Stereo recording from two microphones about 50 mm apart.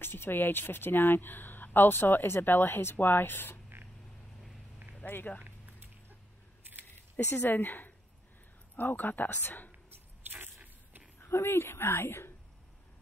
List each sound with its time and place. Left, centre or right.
0.0 s speech: left
5.3 s speech: centre
7.2 s speech: left
10.3 s biting: right
11.2 s speech: left